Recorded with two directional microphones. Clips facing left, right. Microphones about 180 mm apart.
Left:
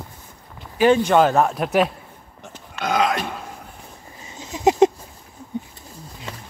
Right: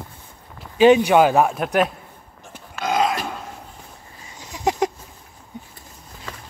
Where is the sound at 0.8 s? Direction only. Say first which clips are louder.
Right 2 dB; 15° right (ahead or behind).